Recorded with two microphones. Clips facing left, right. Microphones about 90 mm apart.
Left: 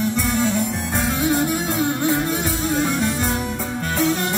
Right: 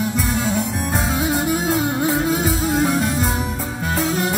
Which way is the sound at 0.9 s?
5° right (ahead or behind).